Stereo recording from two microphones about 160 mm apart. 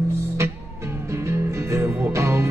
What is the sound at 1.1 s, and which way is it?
Music, 15° right (ahead or behind).